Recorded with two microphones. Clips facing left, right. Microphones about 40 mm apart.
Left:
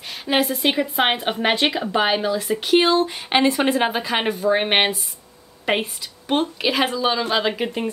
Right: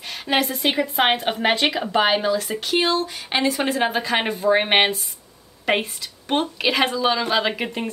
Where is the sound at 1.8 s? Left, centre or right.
Centre.